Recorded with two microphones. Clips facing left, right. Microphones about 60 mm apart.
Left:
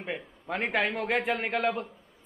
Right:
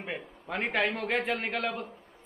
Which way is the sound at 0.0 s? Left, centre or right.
Centre.